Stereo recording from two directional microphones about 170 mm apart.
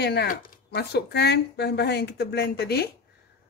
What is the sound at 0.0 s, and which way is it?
Speech, 75° left (ahead or behind).